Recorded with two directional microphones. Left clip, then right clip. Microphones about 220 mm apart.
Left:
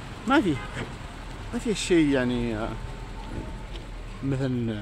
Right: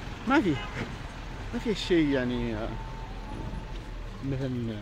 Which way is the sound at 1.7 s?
15° left (ahead or behind).